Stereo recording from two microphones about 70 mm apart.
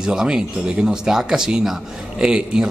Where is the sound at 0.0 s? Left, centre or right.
Centre.